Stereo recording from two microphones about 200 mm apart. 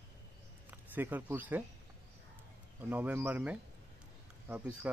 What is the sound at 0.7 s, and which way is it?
Speech, 10° right (ahead or behind).